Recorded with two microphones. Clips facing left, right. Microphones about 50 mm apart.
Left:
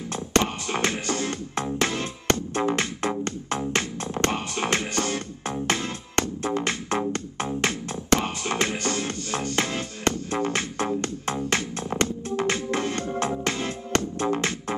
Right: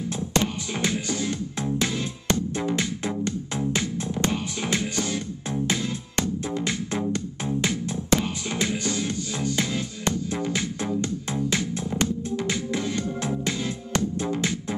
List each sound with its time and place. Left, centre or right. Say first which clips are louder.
0.3 s music: left 3 dB; left
11.9 s music: left 2 dB; left